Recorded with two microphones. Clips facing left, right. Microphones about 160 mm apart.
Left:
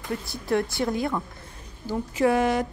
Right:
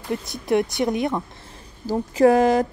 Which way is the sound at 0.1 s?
20° right (ahead or behind).